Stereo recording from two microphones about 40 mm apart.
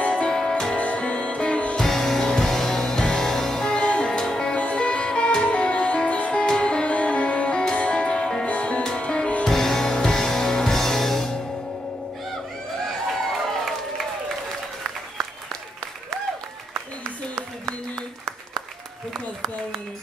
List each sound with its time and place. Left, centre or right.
0.0 s music: left
0.3 s music: centre
0.7 s music: left
1.8 s music: centre
3.8 s music: left
4.1 s music: centre
4.6 s music: left
6.3 s music: left
9.5 s music: centre